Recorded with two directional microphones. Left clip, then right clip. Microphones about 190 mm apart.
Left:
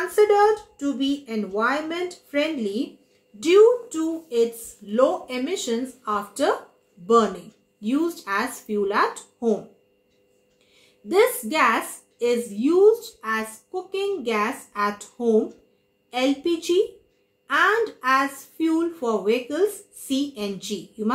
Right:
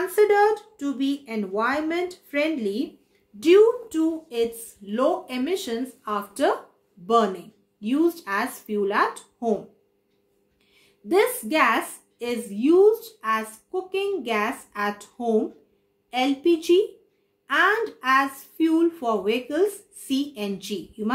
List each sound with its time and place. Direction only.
0.1 s a woman's voice: 45° right (ahead or behind)
7.8 s speech: 40° right (ahead or behind)
11.1 s a woman's voice: 45° right (ahead or behind)